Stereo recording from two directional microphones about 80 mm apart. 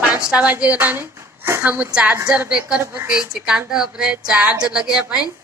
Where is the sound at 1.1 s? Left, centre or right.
Right.